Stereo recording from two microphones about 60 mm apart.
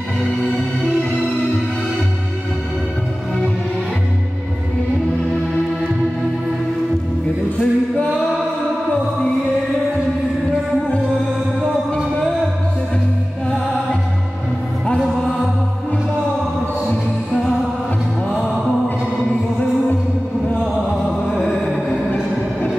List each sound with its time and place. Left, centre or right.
7.5 s a capella: centre
21.4 s music: centre